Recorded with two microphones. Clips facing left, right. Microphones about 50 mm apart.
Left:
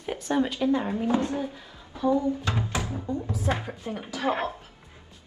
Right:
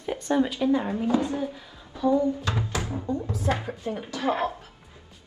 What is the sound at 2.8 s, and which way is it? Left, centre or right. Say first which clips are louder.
Speech: right 2 dB; right.